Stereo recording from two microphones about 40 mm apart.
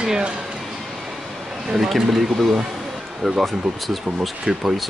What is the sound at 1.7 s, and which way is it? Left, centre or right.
Speech, centre.